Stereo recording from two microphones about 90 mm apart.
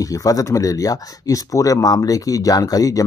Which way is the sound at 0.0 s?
40° left (ahead or behind).